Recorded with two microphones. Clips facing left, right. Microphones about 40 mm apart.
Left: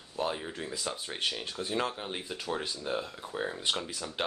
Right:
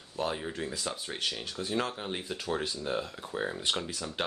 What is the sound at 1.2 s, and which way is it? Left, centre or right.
Speech, centre.